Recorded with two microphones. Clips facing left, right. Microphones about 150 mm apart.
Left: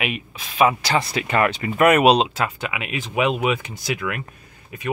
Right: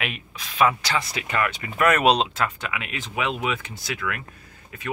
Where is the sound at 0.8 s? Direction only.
35° left (ahead or behind).